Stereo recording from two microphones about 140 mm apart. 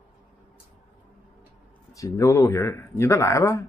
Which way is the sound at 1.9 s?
20° left (ahead or behind).